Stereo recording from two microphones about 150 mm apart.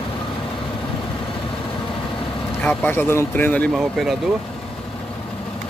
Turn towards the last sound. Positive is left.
turn(degrees=0)  # may be behind; listen again after turning